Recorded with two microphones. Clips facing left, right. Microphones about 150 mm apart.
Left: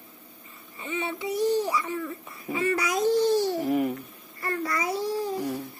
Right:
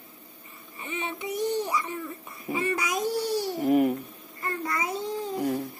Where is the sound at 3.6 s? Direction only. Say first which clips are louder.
Right 3 dB; 45° right (ahead or behind).